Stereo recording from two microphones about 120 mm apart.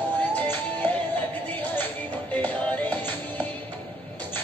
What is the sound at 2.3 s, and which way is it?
Music, 10° left (ahead or behind).